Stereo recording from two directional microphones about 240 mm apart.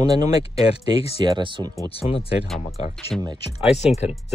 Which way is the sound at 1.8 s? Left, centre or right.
Left.